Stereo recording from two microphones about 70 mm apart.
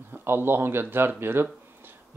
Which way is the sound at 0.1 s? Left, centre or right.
Right.